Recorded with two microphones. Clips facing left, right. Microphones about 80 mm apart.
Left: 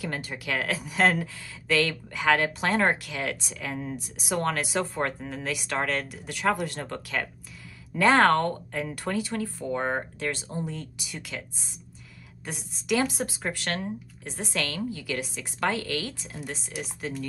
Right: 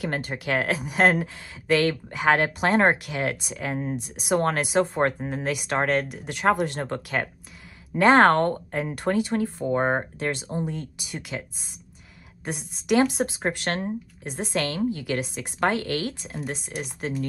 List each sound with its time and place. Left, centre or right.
0.0 s speech: right
0.4 s a woman's voice: right
12.4 s speech: right
13.0 s a woman's voice: right
14.2 s speech: right
14.6 s a woman's voice: right